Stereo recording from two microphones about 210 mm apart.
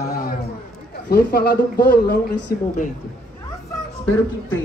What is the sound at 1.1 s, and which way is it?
Speech, 45° left (ahead or behind).